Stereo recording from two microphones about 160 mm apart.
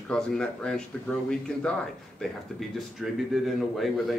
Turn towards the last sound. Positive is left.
turn(degrees=0)  # may be behind; listen again after turning